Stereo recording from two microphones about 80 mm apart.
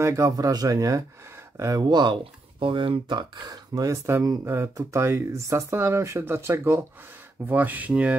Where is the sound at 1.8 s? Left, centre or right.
Right.